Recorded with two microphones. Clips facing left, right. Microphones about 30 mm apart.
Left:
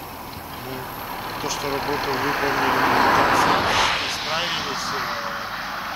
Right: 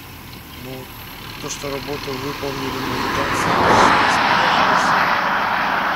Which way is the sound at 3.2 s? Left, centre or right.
Left.